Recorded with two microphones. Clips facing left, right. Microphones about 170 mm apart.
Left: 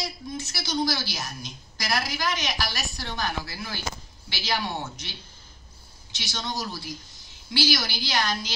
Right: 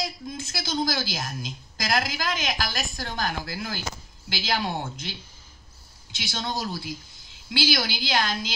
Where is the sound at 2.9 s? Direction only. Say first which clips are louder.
Even; 55° right (ahead or behind).